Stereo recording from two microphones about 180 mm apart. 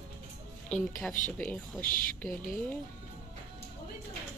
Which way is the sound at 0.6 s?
5° left (ahead or behind).